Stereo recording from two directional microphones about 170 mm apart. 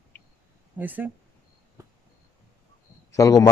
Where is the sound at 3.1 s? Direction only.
20° left (ahead or behind).